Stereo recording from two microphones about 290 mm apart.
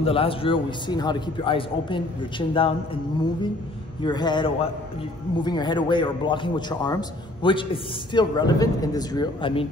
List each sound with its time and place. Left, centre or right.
0.0 s a man's voice: centre
4.0 s a man's voice: centre